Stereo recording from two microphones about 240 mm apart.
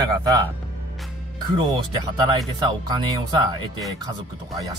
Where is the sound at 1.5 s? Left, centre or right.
Centre.